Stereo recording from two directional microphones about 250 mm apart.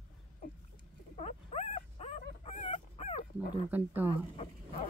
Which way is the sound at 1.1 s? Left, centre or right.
Left.